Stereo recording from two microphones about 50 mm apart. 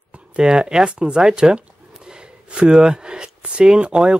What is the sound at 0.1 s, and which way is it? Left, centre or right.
Speech, centre.